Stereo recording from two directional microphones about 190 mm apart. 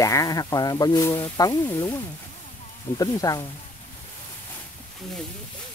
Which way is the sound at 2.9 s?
20° left (ahead or behind).